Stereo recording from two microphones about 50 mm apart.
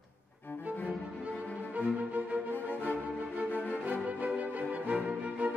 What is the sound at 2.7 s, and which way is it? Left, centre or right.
Music, left.